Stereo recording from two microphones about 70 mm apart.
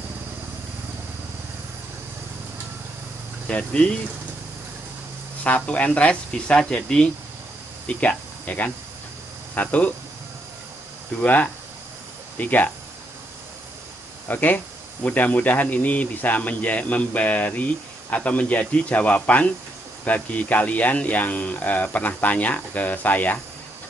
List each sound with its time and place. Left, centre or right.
3.5 s speech: centre
5.4 s speech: left
11.2 s speech: left
14.2 s speech: left